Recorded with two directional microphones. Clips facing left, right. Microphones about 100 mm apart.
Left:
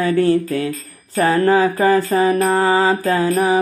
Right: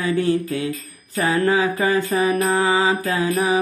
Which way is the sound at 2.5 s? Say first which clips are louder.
Left 3 dB; 45° left (ahead or behind).